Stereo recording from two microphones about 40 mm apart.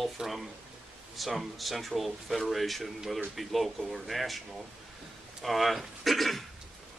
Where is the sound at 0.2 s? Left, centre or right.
Centre.